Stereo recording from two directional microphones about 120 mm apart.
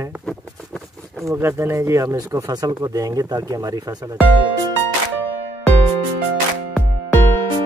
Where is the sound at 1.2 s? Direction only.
20° right (ahead or behind).